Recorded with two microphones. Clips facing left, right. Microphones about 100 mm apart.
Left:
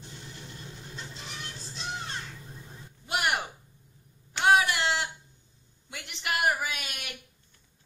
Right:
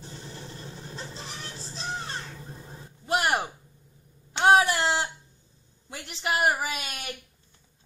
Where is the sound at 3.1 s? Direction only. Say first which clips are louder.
Right 4 dB; 35° right (ahead or behind).